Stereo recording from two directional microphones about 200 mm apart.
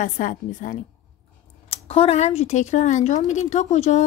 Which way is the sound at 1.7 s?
30° left (ahead or behind).